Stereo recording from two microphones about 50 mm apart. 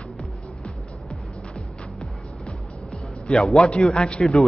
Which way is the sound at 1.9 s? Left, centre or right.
Centre.